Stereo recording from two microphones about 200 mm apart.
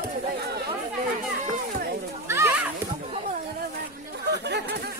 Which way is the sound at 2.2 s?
10° right (ahead or behind).